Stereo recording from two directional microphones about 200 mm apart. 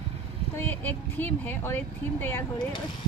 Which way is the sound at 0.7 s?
10° left (ahead or behind).